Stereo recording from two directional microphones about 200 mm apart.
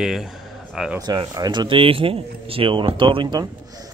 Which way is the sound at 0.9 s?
20° right (ahead or behind).